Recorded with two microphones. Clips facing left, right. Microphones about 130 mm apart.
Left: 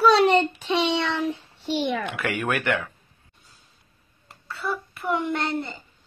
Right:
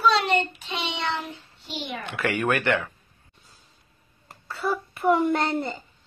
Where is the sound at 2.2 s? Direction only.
5° left (ahead or behind).